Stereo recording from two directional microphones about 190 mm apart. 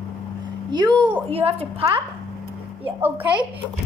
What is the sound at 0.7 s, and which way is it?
A woman's voice, 20° right (ahead or behind).